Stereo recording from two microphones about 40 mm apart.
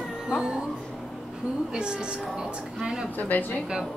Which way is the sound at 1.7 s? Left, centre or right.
Right.